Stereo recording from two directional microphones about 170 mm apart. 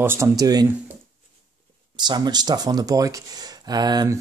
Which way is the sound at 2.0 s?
25° right (ahead or behind).